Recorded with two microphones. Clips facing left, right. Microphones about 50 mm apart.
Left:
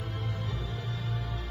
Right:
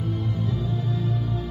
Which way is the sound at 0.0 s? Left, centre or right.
Left.